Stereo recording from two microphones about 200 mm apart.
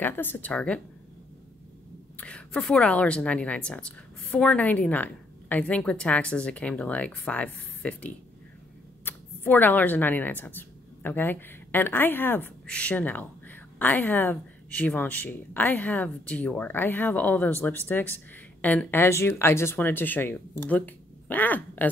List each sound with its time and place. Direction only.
0.0 s speech: 10° left (ahead or behind)
2.1 s a woman's voice: 5° left (ahead or behind)